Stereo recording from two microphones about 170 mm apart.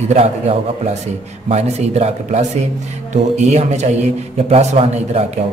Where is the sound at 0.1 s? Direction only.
40° right (ahead or behind).